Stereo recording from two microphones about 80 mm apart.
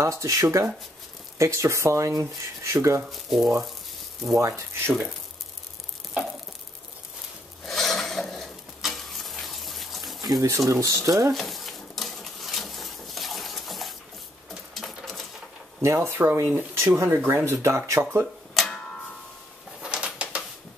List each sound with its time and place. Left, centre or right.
0.0 s speech: right
3.1 s speech: centre
4.4 s speech: right
7.6 s stir: centre
10.4 s speech: right
11.3 s a sound: centre
15.8 s speech: right
19.8 s bird: centre